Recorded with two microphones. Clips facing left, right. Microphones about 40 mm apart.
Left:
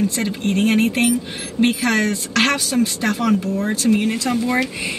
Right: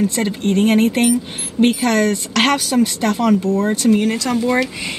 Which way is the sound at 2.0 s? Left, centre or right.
Right.